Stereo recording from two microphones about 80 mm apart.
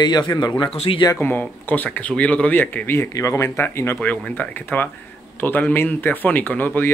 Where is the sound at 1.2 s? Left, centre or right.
Left.